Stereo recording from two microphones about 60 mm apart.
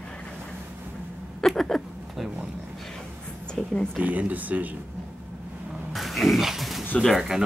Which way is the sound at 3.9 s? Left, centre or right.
Right.